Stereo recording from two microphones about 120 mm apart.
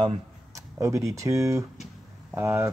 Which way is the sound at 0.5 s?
25° right (ahead or behind).